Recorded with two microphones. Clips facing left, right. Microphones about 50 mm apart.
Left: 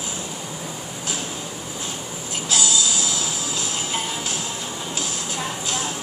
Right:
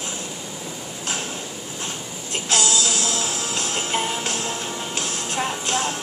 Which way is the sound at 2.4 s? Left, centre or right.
Right.